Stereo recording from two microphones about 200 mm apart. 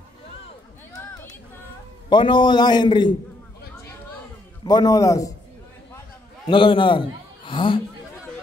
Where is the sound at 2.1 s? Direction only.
25° left (ahead or behind).